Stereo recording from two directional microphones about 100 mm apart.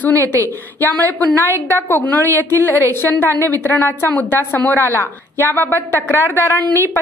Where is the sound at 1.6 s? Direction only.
20° left (ahead or behind).